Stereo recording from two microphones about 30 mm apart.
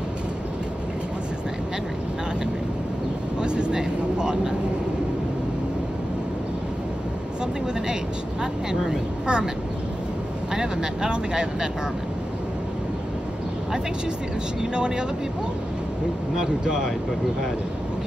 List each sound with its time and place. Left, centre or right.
3.3 s vehicle: right
9.2 s speech: right
10.5 s speech: right
14.6 s speech: right
16.3 s speech: centre